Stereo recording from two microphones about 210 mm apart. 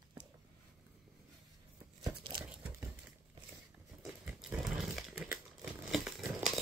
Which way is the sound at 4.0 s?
5° right (ahead or behind).